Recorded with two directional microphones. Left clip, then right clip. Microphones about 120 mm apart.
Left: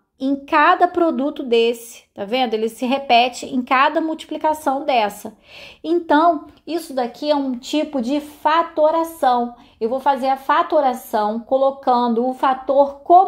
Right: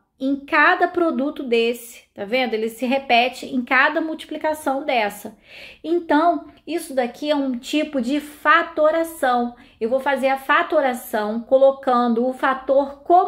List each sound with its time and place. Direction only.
0.2 s a woman's voice: 40° left (ahead or behind)
7.0 s a woman's voice: 25° left (ahead or behind)